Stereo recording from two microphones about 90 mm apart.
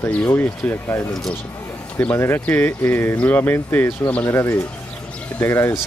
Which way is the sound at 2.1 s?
25° left (ahead or behind).